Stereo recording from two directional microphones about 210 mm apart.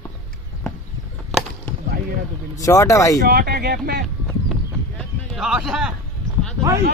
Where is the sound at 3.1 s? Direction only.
45° right (ahead or behind).